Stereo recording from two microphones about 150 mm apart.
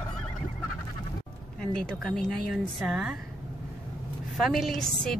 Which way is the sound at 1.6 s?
5° left (ahead or behind).